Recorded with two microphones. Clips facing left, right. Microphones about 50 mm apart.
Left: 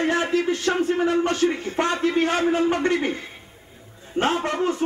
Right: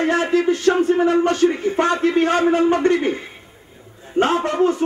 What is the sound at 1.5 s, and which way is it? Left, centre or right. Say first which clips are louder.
Speech: right 5 dB; centre.